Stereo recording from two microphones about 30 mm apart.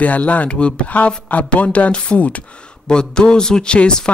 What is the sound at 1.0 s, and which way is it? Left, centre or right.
Speech, left.